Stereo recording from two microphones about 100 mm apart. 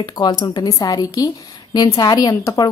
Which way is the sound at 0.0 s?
45° left (ahead or behind).